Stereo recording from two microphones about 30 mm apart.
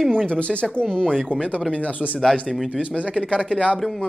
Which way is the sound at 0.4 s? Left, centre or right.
Left.